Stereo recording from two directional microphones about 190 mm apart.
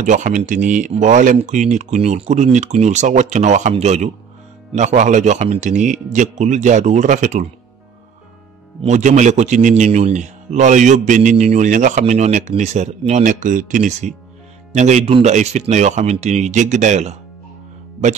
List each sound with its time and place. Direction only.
0.0 s a man's voice: 40° right (ahead or behind)
8.8 s a man's voice: 40° right (ahead or behind)